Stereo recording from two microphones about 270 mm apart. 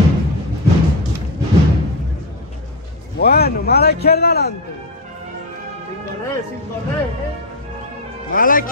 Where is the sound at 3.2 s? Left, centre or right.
Left.